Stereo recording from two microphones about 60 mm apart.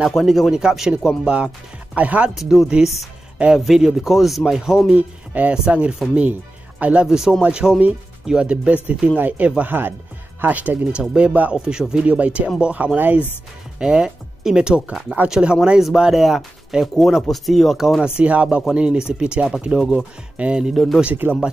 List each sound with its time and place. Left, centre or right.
0.2 s speech: centre; by 2.3 s right
2.3 s speech: centre
4.9 s speech: right
11.5 s speech: centre; by 13.2 s right
13.7 s speech: centre
20.7 s speech: centre
21.0 s speech: right